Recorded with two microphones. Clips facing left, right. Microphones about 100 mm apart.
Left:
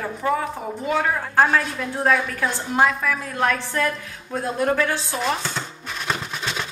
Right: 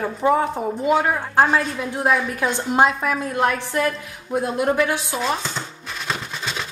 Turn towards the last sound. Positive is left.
turn(degrees=0)  # may be behind; listen again after turning